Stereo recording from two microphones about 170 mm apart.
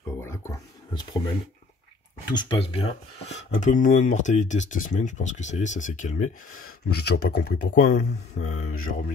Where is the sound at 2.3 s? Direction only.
35° left (ahead or behind).